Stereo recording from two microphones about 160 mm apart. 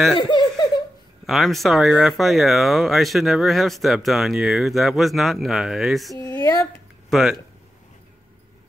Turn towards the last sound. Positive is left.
turn(degrees=0)  # may be behind; listen again after turning